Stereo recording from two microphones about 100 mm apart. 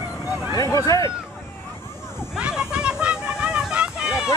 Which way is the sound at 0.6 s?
35° left (ahead or behind).